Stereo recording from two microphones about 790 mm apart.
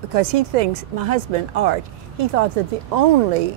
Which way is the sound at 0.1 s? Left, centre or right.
Right.